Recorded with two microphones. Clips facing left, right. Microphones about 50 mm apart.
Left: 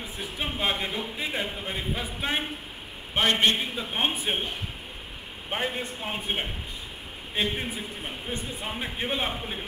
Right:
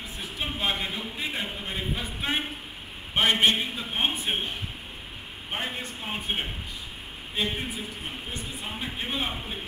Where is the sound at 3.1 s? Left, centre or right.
Centre.